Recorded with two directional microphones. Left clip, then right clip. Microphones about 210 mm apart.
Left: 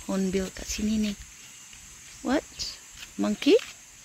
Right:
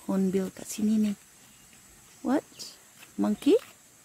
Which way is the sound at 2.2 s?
10° right (ahead or behind).